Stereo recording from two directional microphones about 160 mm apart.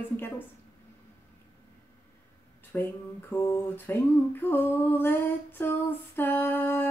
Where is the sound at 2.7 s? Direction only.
15° left (ahead or behind).